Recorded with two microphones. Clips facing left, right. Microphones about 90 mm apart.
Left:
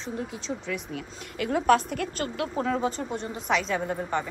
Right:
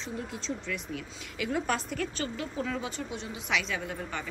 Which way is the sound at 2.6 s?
40° left (ahead or behind).